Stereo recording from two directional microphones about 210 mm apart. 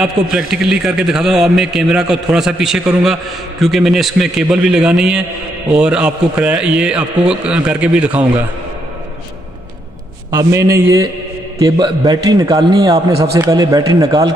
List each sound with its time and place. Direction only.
0.0 s a man's voice: centre (ahead or behind)
10.3 s a man's voice: 15° right (ahead or behind)